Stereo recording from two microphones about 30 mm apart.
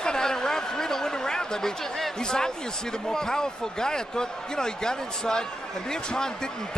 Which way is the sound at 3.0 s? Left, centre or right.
Left.